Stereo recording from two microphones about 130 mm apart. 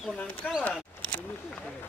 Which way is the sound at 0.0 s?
5° left (ahead or behind).